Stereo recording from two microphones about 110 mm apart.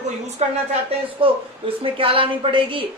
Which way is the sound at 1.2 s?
55° right (ahead or behind).